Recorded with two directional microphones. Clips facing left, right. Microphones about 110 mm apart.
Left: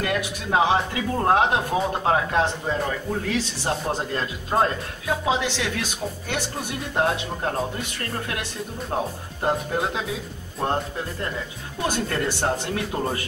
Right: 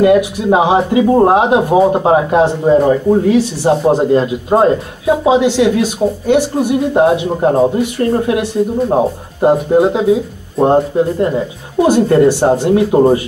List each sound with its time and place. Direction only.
0.0 s speech: 20° right (ahead or behind)